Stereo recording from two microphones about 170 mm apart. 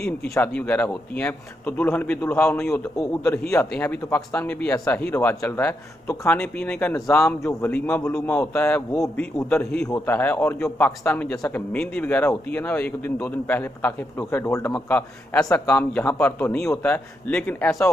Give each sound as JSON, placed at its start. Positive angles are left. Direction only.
{"t": 0.0, "sound": "speech", "side_deg": 10}